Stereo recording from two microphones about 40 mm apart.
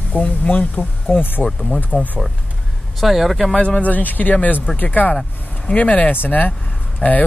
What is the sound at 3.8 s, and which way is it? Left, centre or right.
Speech, left.